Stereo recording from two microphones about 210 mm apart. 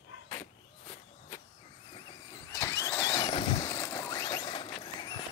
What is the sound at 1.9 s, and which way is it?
Vehicle, 15° left (ahead or behind).